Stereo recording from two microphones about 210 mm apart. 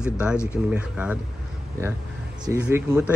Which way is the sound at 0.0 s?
5° right (ahead or behind).